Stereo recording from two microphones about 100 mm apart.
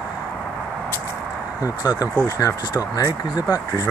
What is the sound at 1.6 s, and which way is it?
Speech, 40° left (ahead or behind).